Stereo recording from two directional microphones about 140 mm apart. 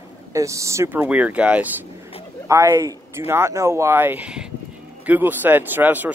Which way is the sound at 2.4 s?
20° right (ahead or behind).